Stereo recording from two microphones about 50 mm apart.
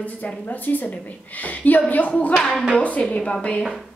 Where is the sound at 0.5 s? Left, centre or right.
Left.